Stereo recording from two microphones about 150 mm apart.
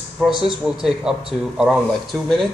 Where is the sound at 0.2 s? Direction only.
5° right (ahead or behind).